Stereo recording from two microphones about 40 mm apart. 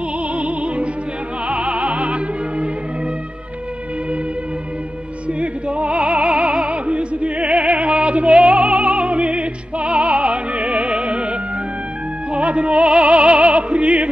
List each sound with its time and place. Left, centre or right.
0.3 s music: right
5.4 s music: right